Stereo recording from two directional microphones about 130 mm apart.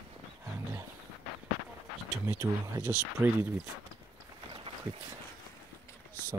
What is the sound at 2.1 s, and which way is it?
Speech, 20° right (ahead or behind).